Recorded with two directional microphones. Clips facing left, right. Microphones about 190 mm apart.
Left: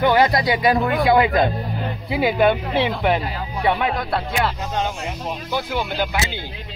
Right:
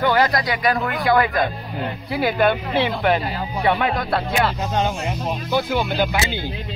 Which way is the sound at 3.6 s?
Centre (ahead or behind).